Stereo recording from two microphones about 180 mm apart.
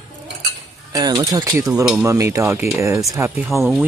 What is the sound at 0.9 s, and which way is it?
Speech, 20° right (ahead or behind).